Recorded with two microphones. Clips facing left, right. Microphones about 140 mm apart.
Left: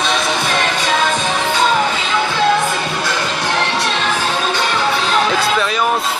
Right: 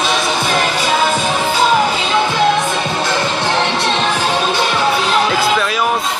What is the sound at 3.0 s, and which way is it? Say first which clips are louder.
Music: right 3 dB; 25° right (ahead or behind).